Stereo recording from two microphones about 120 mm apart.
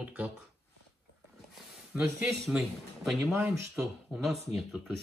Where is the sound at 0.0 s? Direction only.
10° right (ahead or behind).